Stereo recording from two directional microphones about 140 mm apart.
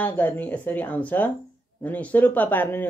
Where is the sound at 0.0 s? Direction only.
10° left (ahead or behind).